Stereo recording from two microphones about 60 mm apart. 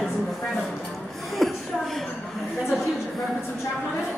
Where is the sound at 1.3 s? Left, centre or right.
Centre.